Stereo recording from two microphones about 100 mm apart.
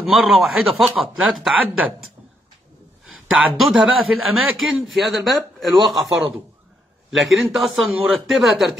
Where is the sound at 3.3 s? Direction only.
Centre (ahead or behind).